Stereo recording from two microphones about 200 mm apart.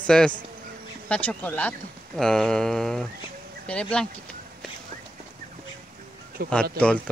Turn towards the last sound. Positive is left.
turn(degrees=5)  # may be behind; listen again after turning